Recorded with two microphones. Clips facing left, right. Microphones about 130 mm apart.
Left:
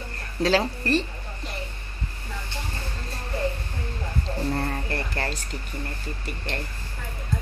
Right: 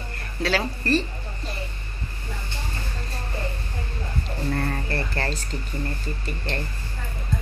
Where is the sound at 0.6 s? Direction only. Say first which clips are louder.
Even; 20° left (ahead or behind).